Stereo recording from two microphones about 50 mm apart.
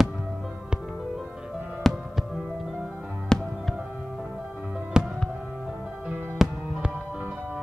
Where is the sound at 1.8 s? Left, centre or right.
Centre.